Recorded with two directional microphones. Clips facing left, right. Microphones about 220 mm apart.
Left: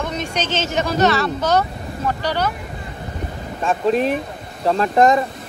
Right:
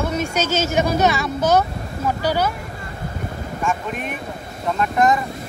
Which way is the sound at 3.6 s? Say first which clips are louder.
Left 8 dB; 30° left (ahead or behind).